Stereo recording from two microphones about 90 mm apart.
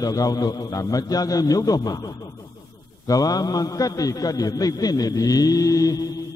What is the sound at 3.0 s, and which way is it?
A man's voice, 40° left (ahead or behind).